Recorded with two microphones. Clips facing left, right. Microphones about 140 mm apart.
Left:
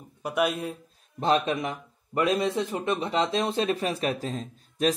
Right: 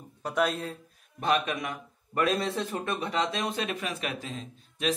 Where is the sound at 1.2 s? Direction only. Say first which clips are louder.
Left 4 dB; 30° left (ahead or behind).